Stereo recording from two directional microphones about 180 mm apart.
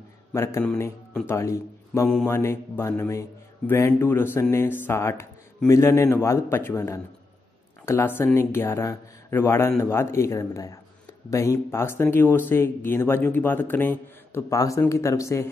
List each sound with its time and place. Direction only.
0.3 s a man's voice: 15° left (ahead or behind)